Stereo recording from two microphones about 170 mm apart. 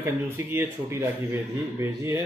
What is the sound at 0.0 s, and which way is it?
Speech, 15° right (ahead or behind).